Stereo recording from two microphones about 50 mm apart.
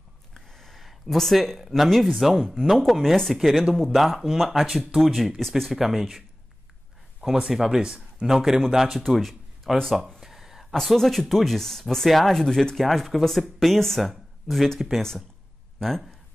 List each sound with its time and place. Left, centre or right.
0.3 s speech: centre
7.4 s speech: centre
9.0 s speech: centre
10.2 s a man's voice: centre